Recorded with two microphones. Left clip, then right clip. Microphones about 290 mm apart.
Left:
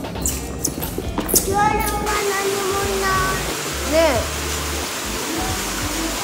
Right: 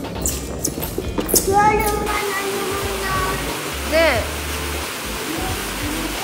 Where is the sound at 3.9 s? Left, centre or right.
Centre.